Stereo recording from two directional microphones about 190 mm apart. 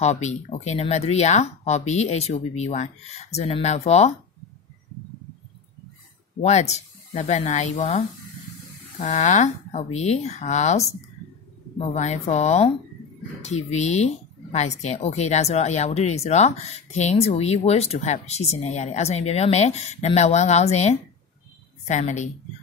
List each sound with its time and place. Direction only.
0.0 s speech: 35° left (ahead or behind)
6.4 s speech: 35° left (ahead or behind)
9.0 s speech: 40° left (ahead or behind)